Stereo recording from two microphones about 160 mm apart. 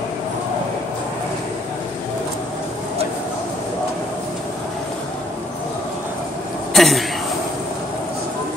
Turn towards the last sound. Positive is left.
turn(degrees=0)  # may be behind; listen again after turning